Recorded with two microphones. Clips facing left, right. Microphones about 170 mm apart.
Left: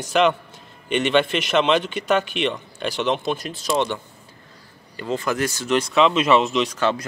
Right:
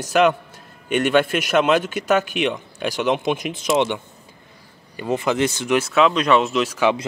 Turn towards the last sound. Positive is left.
turn(degrees=-10)  # may be behind; listen again after turning